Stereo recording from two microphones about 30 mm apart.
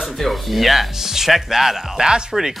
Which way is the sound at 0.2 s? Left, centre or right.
Centre.